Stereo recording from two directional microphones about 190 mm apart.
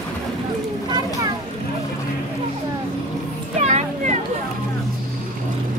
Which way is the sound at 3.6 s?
40° right (ahead or behind).